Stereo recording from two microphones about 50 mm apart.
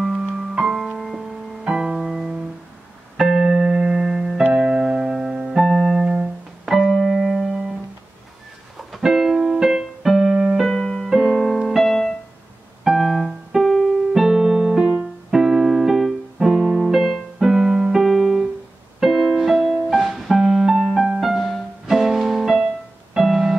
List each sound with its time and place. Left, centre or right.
0.0 s music: centre
6.0 s music: centre
6.8 s music: centre
8.7 s keyboard: centre
10.6 s music: centre
11.1 s music: centre
15.3 s piano: centre
16.3 s music: centre